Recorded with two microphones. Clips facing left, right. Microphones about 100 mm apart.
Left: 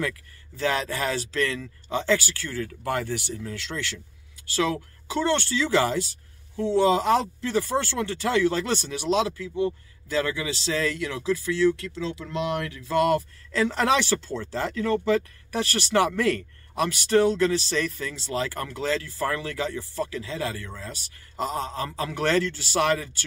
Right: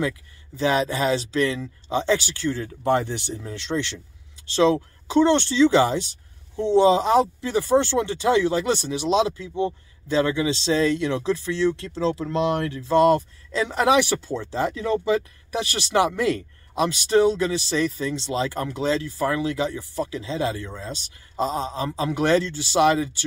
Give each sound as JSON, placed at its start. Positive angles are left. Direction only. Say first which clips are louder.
{"t": 0.6, "sound": "speech", "louder": "right 5 dB", "side_deg": -20}